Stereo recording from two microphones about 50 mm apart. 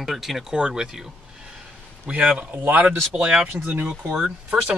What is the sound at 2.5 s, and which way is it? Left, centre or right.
Speech, right.